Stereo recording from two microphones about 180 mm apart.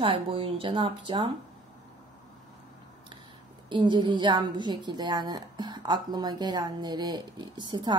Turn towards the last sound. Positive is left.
turn(degrees=-25)  # may be behind; listen again after turning